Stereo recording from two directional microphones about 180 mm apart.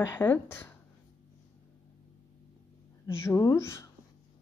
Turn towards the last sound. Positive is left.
turn(degrees=15)  # may be behind; listen again after turning